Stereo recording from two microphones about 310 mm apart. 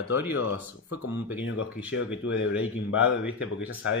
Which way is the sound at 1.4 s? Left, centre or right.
Left.